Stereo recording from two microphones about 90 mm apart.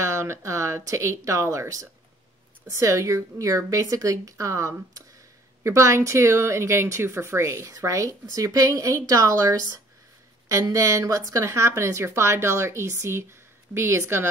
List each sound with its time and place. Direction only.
0.0 s speech: 30° right (ahead or behind)